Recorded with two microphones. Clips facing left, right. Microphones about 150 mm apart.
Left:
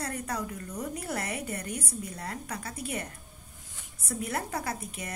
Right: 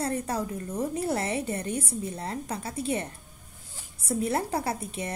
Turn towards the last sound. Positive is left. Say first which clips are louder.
# right 5 dB
turn(degrees=-30)  # may be behind; listen again after turning